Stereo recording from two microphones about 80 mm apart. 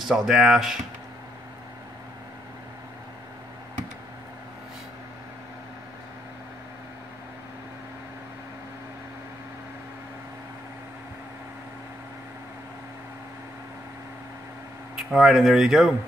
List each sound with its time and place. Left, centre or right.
0.1 s speech: centre
15.0 s speech: centre